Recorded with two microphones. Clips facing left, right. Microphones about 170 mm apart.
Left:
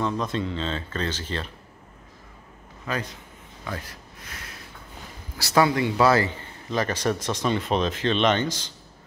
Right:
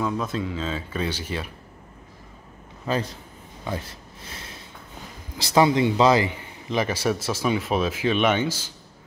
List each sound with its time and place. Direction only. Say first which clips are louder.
0.0 s a man's voice: even; 5° right (ahead or behind)
2.9 s a man's voice: right 4 dB; 30° right (ahead or behind); by 8.6 s 10° right (ahead or behind)